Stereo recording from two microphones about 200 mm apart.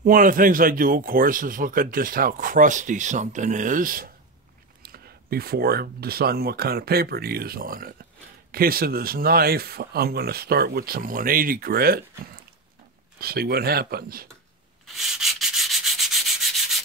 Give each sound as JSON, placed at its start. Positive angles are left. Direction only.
{"t": 0.0, "sound": "a man's voice", "side_deg": -45}
{"t": 13.2, "sound": "a man's voice", "side_deg": -50}
{"t": 14.9, "sound": "rub", "side_deg": 0}